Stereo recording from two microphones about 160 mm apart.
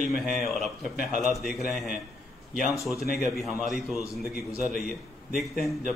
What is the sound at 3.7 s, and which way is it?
Speech, centre (ahead or behind).